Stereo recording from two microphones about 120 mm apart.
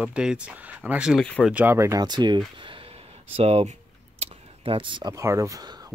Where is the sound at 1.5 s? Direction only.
15° right (ahead or behind); by 3.7 s 55° right (ahead or behind).